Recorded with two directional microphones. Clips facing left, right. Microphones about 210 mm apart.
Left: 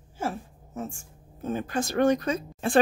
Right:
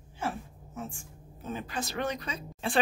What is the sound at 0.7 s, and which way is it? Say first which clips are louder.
Speech: left 5 dB; 45° left (ahead or behind).